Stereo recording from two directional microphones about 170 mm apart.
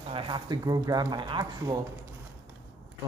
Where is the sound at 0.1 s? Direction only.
30° right (ahead or behind).